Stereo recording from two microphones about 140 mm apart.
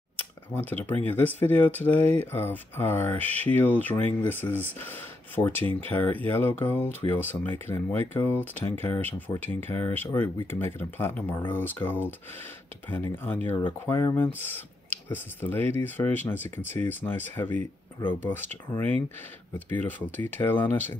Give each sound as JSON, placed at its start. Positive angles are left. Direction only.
{"t": 0.6, "sound": "speech", "side_deg": 15}
{"t": 13.2, "sound": "speech", "side_deg": 15}